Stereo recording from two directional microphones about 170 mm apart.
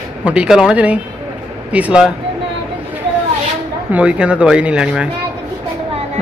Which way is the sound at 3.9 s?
5° right (ahead or behind).